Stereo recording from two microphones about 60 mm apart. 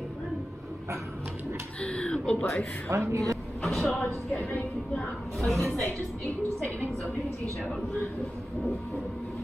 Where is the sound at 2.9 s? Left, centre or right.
Right.